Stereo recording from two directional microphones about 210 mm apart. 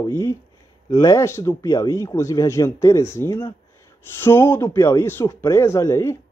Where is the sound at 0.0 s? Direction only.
15° left (ahead or behind).